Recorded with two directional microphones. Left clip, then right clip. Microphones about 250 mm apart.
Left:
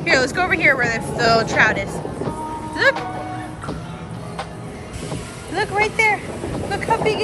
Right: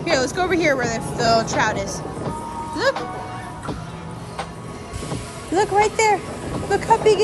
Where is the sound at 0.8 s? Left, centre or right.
Centre.